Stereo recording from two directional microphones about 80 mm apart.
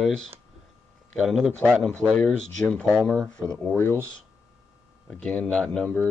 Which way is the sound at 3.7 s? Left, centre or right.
Left.